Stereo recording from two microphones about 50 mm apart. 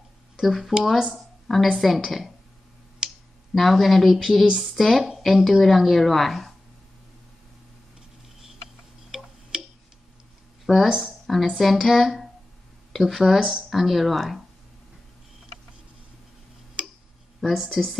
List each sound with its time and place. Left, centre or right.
0.4 s a woman's voice: centre
3.0 s a sound: centre
3.5 s a woman's voice: centre
9.5 s tick-tock: centre
10.7 s a woman's voice: centre
16.8 s tick-tock: centre
17.4 s a woman's voice: centre